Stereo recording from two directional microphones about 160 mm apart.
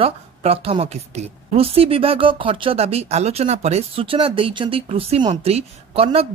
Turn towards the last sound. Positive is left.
turn(degrees=-35)  # may be behind; listen again after turning